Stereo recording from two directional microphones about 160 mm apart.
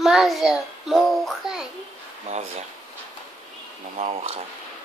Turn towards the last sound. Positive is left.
turn(degrees=-45)  # may be behind; listen again after turning